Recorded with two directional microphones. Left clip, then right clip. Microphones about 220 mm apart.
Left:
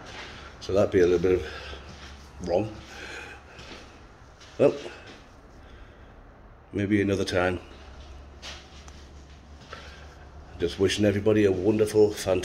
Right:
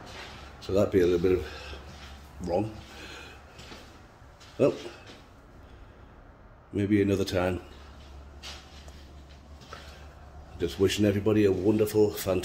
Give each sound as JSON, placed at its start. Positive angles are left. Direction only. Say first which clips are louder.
{"t": 0.6, "sound": "speech", "louder": "left 3 dB", "side_deg": -25}
{"t": 4.6, "sound": "speech", "louder": "left 3 dB", "side_deg": -30}
{"t": 6.7, "sound": "speech", "louder": "even", "side_deg": -25}
{"t": 10.6, "sound": "speech", "louder": "left 2 dB", "side_deg": -25}